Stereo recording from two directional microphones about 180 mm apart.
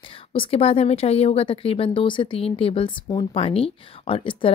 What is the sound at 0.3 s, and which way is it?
A woman's voice, 35° left (ahead or behind).